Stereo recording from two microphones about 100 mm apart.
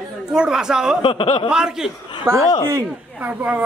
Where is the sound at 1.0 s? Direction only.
55° left (ahead or behind).